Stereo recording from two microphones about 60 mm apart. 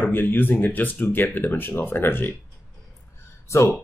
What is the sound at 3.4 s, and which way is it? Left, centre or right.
Speech, left.